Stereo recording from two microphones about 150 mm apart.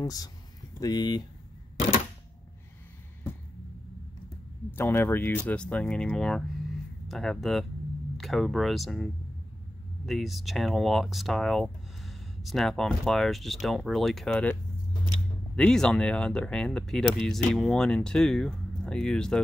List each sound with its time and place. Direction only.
0.0 s speech: 25° left (ahead or behind)
4.6 s speech: 15° left (ahead or behind)